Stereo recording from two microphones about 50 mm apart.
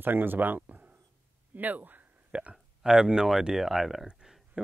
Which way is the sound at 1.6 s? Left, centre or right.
Right.